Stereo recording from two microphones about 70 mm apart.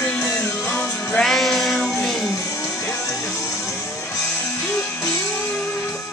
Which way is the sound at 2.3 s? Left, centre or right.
Left.